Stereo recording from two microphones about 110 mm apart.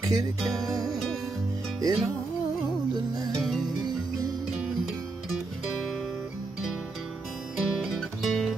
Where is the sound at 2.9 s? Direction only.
40° right (ahead or behind).